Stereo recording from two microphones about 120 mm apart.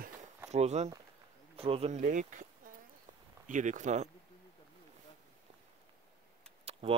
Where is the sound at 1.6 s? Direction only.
55° right (ahead or behind); by 4.1 s 80° right.